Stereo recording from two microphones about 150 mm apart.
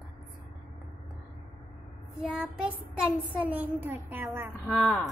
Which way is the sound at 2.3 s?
5° right (ahead or behind).